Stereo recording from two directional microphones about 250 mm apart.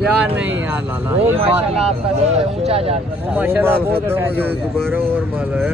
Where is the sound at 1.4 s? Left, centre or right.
Right.